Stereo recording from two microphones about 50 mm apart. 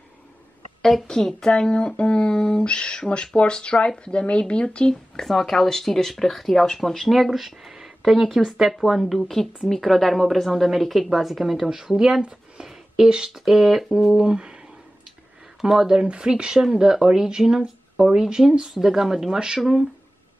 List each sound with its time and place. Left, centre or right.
0.8 s speech: centre
5.2 s speech: centre
7.2 s speech: centre
15.6 s speech: centre